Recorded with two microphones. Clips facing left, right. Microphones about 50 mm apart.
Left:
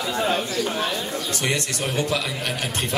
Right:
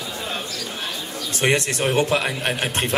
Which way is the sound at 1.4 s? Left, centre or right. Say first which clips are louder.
Right 8 dB; right.